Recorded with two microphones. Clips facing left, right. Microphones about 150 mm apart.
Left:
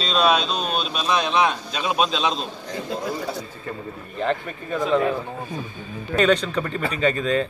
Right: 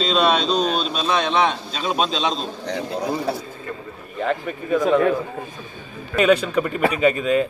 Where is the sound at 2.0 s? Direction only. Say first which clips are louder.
Right 1 dB; 30° right (ahead or behind).